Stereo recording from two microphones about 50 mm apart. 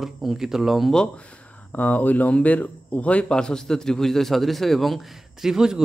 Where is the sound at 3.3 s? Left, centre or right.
Centre.